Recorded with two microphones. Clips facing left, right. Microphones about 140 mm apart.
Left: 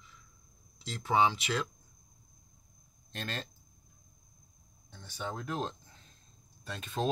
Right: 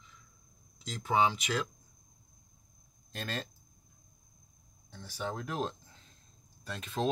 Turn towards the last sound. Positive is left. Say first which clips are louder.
# right 1 dB
turn(degrees=0)  # may be behind; listen again after turning